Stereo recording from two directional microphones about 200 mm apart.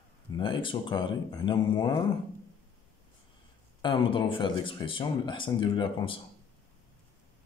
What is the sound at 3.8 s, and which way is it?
Speech, 25° left (ahead or behind).